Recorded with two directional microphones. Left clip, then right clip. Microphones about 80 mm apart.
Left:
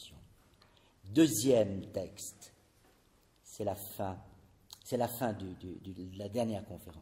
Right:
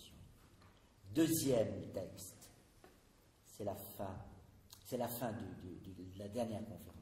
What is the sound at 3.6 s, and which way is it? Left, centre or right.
A man's voice, left.